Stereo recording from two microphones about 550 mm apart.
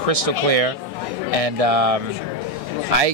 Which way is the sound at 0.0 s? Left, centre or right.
Right.